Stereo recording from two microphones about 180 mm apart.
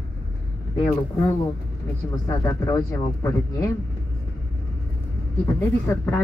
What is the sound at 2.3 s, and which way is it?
Speech, 20° left (ahead or behind).